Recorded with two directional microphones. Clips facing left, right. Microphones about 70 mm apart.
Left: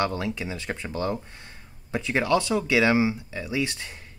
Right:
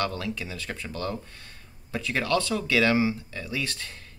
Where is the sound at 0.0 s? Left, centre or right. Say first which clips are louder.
Left 3 dB; left.